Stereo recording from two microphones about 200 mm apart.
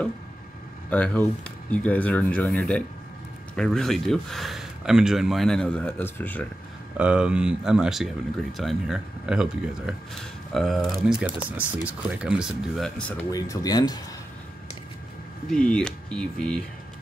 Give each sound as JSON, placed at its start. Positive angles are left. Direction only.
{"t": 0.8, "sound": "speech", "side_deg": 5}
{"t": 7.0, "sound": "speech", "side_deg": -5}
{"t": 13.3, "sound": "speech", "side_deg": 15}
{"t": 15.5, "sound": "speech", "side_deg": 5}